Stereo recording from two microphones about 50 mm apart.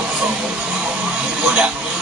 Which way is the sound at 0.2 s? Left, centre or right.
Centre.